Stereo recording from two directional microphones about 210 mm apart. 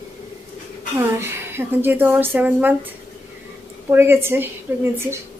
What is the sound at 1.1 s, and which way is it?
A woman's voice, 10° right (ahead or behind).